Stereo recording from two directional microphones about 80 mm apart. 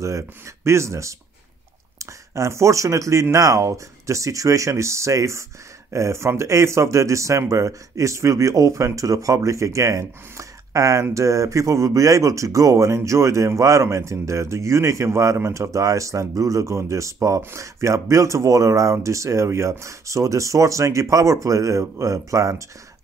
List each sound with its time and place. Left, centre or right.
0.7 s speech: right